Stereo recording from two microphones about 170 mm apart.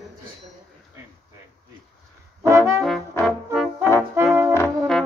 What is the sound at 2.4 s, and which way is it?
Brass instrument, 15° right (ahead or behind).